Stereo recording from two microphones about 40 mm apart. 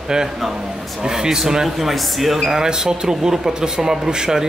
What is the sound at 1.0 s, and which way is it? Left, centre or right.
Speech, centre.